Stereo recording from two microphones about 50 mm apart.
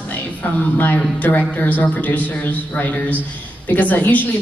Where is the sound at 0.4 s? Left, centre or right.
Left.